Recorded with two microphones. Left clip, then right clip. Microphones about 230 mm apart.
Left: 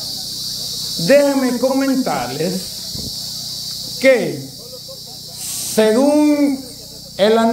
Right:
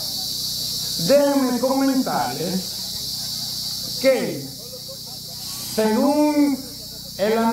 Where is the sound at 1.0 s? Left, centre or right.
Left.